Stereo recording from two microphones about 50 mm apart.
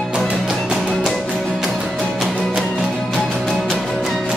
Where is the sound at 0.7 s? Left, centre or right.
Centre.